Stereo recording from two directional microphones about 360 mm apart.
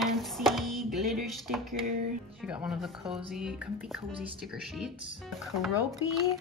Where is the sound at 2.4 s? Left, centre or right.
Centre.